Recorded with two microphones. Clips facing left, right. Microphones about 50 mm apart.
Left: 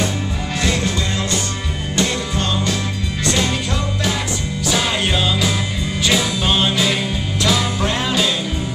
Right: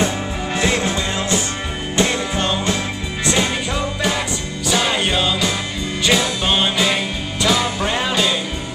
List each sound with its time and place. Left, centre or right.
0.6 s music: right
3.3 s music: centre
4.6 s music: centre